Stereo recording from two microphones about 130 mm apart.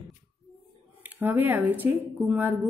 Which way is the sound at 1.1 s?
15° right (ahead or behind).